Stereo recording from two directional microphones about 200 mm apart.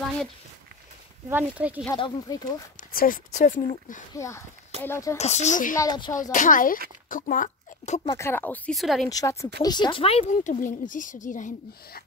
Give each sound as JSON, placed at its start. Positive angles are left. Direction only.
{"t": 1.3, "sound": "speech", "side_deg": -10}
{"t": 2.0, "sound": "speech", "side_deg": 20}
{"t": 2.9, "sound": "speech", "side_deg": 45}
{"t": 4.1, "sound": "speech", "side_deg": 15}
{"t": 5.2, "sound": "speech", "side_deg": 35}
{"t": 5.8, "sound": "speech", "side_deg": 20}
{"t": 6.3, "sound": "speech", "side_deg": 40}
{"t": 8.1, "sound": "speech", "side_deg": 10}
{"t": 9.1, "sound": "speech", "side_deg": 15}
{"t": 10.3, "sound": "speech", "side_deg": 40}